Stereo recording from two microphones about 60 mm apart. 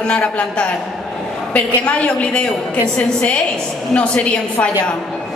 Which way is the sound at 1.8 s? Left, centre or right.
Centre.